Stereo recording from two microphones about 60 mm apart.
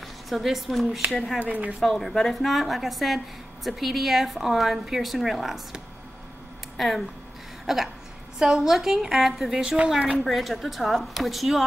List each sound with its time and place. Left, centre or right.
0.3 s a woman's voice: centre
1.4 s speech: right
1.8 s a woman's voice: centre
6.8 s a woman's voice: centre
7.6 s a sound: centre
8.4 s a woman's voice: centre
10.2 s a woman's voice: centre